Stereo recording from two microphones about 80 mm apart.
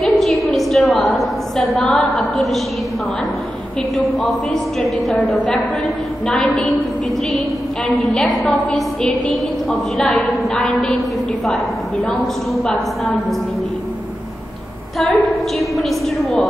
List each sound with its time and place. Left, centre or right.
0.0 s a sound: centre
3.9 s a woman's voice: centre
8.0 s a woman's voice: centre
12.2 s a woman's voice: centre
15.0 s a woman's voice: centre